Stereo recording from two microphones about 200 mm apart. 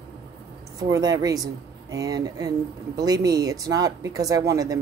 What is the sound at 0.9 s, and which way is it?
Speech, 20° right (ahead or behind).